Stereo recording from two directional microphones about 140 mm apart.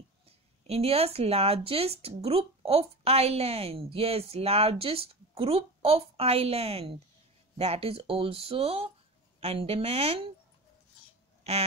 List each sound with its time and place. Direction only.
0.7 s speech: 45° right (ahead or behind)